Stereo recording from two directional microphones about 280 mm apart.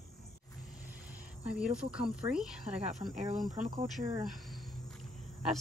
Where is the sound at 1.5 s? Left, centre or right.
Centre.